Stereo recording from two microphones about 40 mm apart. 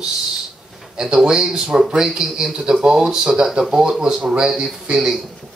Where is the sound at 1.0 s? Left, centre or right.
Centre.